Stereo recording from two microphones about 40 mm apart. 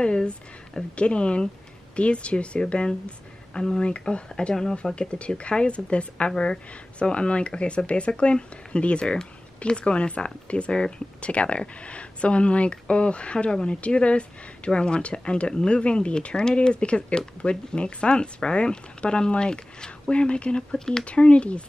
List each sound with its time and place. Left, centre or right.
0.0 s a woman's voice: left
3.5 s speech: centre
3.8 s a woman's voice: left
21.0 s a woman's voice: left